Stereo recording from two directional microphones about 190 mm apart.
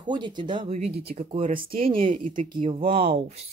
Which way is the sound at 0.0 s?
25° right (ahead or behind).